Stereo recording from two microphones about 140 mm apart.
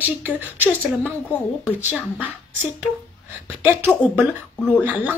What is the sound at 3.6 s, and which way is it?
Speech, 15° right (ahead or behind).